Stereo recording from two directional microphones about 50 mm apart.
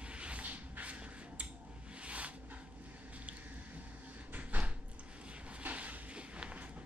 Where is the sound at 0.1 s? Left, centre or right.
Right.